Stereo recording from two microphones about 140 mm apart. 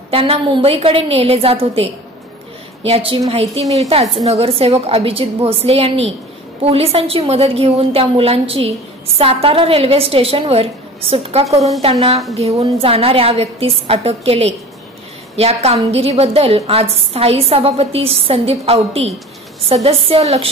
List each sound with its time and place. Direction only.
0.1 s a woman's voice: 40° right (ahead or behind)